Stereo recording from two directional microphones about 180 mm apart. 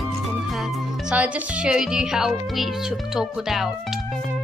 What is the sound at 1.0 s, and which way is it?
Speech, 5° right (ahead or behind).